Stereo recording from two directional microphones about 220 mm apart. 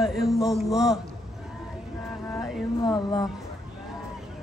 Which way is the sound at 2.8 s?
20° left (ahead or behind).